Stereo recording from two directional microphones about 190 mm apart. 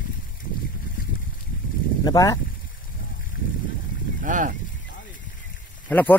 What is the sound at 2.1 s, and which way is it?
Speech, 20° left (ahead or behind).